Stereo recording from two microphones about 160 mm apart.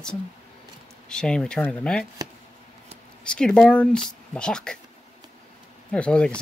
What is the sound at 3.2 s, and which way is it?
Speech, 5° left (ahead or behind).